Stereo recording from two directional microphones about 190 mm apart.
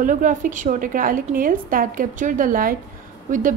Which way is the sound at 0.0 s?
45° right (ahead or behind).